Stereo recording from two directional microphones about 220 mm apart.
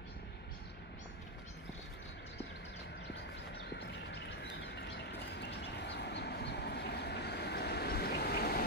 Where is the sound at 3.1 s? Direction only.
50° left (ahead or behind).